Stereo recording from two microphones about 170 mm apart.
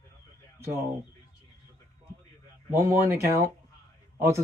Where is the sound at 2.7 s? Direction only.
15° right (ahead or behind).